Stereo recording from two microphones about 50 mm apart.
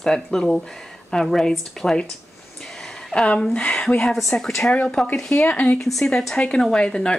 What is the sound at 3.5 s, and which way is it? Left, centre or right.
Speech, left.